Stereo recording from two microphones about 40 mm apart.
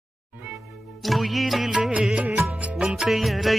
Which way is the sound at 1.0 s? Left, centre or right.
Centre.